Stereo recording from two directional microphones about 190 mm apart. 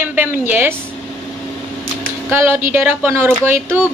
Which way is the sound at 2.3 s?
10° right (ahead or behind).